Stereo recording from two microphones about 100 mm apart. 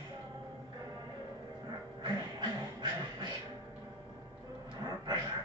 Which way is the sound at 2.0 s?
45° right (ahead or behind).